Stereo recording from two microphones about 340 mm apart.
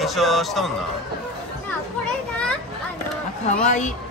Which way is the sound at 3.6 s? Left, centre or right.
Left.